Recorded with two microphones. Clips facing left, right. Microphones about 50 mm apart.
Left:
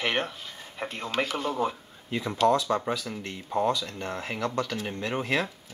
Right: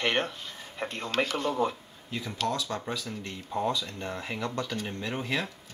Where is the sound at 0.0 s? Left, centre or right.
Centre.